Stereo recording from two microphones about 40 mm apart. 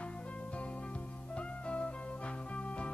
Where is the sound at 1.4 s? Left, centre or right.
Left.